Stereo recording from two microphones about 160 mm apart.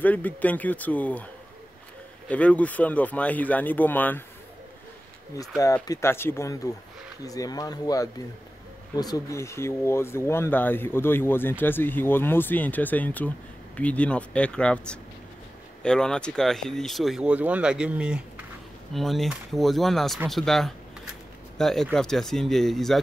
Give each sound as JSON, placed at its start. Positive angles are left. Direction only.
{"t": 0.0, "sound": "speech", "side_deg": 10}
{"t": 5.9, "sound": "speech", "side_deg": 15}